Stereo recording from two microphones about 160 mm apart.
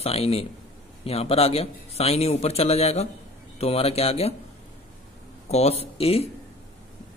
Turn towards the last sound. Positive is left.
turn(degrees=40)  # may be behind; listen again after turning